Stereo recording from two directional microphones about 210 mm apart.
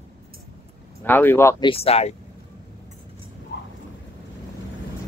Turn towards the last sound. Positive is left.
turn(degrees=55)  # may be behind; listen again after turning